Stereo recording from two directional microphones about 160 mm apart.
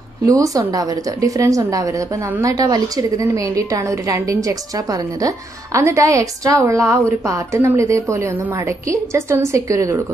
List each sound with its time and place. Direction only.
0.3 s a woman's voice: 20° right (ahead or behind)